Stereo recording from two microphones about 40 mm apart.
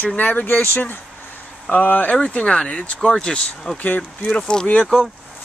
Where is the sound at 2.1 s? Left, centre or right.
Left.